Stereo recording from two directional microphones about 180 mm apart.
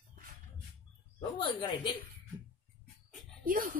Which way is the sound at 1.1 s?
25° left (ahead or behind).